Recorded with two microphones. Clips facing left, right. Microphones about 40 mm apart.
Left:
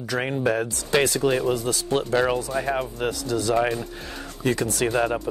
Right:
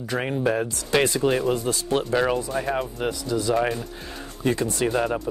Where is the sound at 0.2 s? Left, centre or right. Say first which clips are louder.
Even; centre.